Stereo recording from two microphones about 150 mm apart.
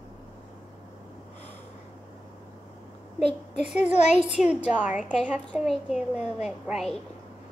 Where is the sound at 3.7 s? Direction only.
50° left (ahead or behind).